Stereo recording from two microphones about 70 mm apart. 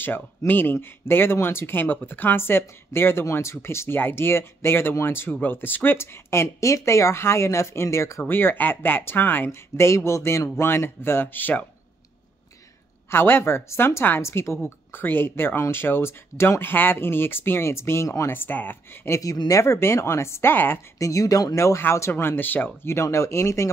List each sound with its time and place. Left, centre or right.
0.5 s a woman's voice: left
8.2 s a woman's voice: left
13.1 s a woman's voice: left
18.3 s speech: left
19.0 s a woman's voice: left
21.0 s speech: left
21.5 s a woman's voice: left
22.8 s speech: left